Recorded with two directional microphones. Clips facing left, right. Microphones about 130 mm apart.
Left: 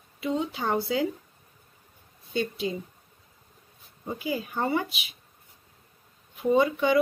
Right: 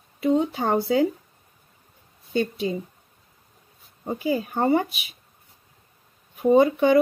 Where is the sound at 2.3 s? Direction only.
40° right (ahead or behind).